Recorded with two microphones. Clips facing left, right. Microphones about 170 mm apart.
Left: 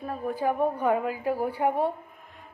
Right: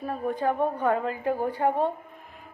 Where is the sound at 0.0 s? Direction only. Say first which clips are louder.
Right 1 dB; centre (ahead or behind).